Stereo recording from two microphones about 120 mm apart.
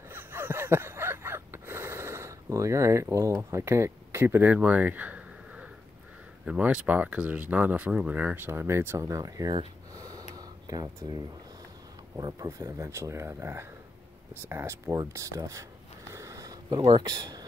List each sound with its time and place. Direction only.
0.1 s a sound: 20° right (ahead or behind)
6.4 s speech: 10° right (ahead or behind); by 9.6 s 30° right (ahead or behind)
9.9 s gasp: 30° right (ahead or behind)
10.3 s a sound: 30° right (ahead or behind)
12.2 s speech: 30° right (ahead or behind)
16.1 s sniff: 25° right (ahead or behind)
16.8 s speech: 35° right (ahead or behind)